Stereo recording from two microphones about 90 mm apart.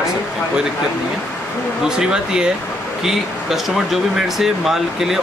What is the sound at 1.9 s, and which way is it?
Speech, 10° right (ahead or behind).